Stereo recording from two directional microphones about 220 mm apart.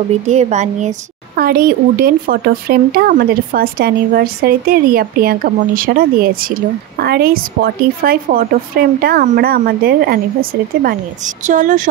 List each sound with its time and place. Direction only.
0.3 s a woman's voice: 30° right (ahead or behind)
11.4 s speech: 35° right (ahead or behind)